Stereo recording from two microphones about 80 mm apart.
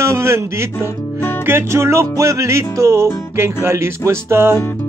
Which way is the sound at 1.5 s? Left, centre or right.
Right.